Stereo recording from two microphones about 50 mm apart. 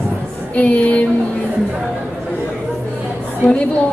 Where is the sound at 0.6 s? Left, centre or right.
Left.